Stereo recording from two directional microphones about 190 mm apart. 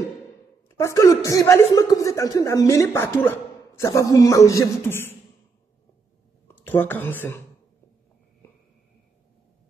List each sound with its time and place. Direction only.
0.7 s speech: 15° left (ahead or behind)
6.4 s speech: 10° left (ahead or behind)